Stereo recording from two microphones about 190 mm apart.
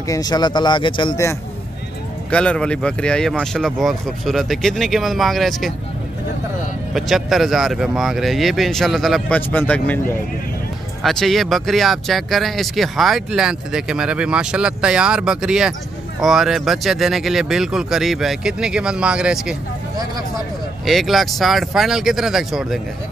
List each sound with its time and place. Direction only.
0.1 s speech: 20° left (ahead or behind)
2.3 s speech: 5° left (ahead or behind)
6.9 s speech: centre (ahead or behind)
20.8 s speech: centre (ahead or behind)